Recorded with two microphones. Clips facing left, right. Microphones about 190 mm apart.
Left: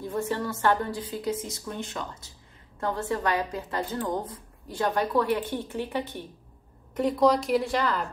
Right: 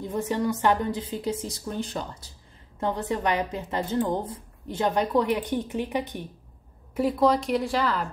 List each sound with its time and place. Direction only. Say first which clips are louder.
0.0 s a woman's voice: right 3 dB; 15° right (ahead or behind); by 2.2 s 35° right (ahead or behind)
2.8 s a woman's voice: right 1 dB; 20° right (ahead or behind); by 8.1 s centre (ahead or behind)